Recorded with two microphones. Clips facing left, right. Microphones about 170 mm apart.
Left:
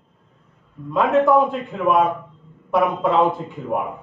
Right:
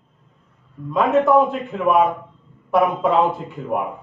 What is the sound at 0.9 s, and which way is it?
A man's voice, centre (ahead or behind).